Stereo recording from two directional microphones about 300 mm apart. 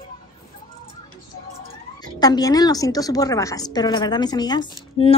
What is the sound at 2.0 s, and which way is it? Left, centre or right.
Speech, centre.